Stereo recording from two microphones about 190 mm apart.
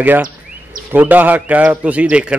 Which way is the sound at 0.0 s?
10° right (ahead or behind).